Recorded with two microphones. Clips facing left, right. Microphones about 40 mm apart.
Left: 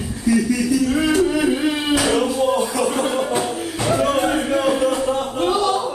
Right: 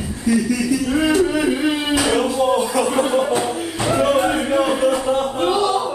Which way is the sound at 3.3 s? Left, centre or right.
Right.